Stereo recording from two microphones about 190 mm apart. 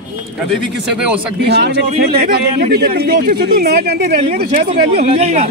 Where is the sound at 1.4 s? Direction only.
60° right (ahead or behind).